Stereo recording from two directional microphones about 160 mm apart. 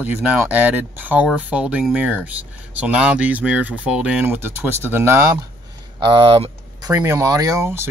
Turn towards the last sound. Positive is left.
turn(degrees=-15)  # may be behind; listen again after turning